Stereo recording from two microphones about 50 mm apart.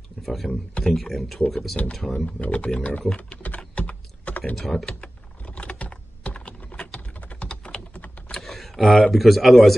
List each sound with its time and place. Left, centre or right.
0.2 s speech: centre
2.4 s speech: left
3.4 s typing: left
4.6 s speech: centre
4.8 s typing: left
8.3 s computer keyboard: centre
9.1 s speech: centre